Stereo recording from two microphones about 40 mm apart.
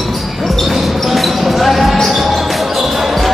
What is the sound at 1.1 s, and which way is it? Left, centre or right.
Basketball bounce, centre.